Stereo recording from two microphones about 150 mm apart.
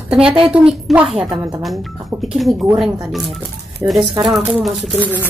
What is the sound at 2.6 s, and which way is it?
Speech, 5° right (ahead or behind).